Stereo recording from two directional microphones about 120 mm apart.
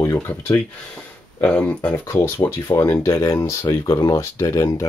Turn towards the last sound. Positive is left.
turn(degrees=30)  # may be behind; listen again after turning